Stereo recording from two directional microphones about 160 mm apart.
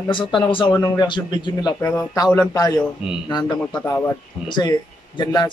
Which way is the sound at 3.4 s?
5° left (ahead or behind).